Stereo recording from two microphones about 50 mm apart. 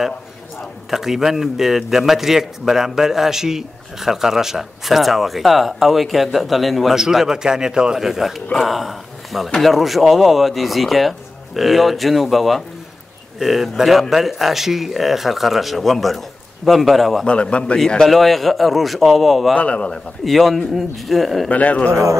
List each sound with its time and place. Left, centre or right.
0.8 s a man's voice: centre
7.0 s a man's voice: centre
17.3 s a man's voice: left
17.7 s a man's voice: centre
19.5 s a man's voice: left
20.2 s speech: centre
21.5 s a man's voice: left